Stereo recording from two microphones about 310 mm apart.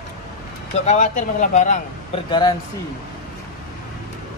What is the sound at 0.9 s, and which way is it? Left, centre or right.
A man's voice, left.